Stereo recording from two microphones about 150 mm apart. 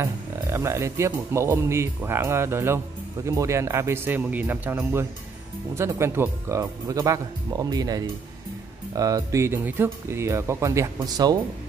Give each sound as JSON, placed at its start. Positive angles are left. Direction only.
{"t": 0.0, "sound": "speech", "side_deg": -20}